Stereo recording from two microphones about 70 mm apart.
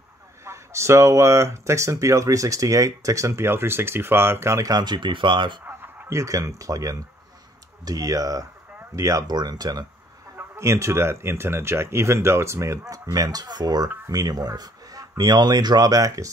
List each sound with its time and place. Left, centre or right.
0.5 s speech: right
4.6 s speech: right
5.7 s a sound: right
6.1 s speech: right
9.3 s speech: right
10.5 s speech: right
14.0 s speech: right